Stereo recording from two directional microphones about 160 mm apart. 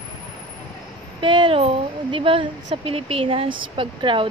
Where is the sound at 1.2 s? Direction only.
30° right (ahead or behind).